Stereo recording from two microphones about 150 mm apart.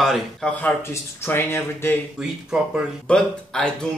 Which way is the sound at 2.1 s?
5° right (ahead or behind).